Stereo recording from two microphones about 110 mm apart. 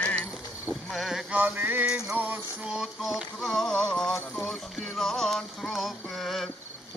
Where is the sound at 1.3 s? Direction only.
15° right (ahead or behind); by 4.1 s 10° left (ahead or behind).